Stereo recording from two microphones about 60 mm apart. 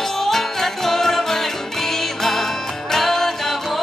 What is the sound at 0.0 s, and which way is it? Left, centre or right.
Music, centre.